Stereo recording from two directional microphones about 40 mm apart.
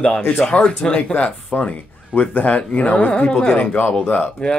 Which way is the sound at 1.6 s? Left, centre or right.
Left.